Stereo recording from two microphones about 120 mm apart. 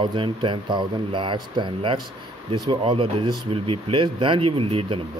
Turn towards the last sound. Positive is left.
turn(degrees=-55)  # may be behind; listen again after turning